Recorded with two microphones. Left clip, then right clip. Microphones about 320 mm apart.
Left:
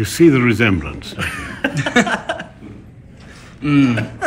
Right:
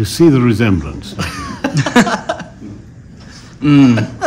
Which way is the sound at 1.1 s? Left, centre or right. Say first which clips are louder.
Right 1 dB; right.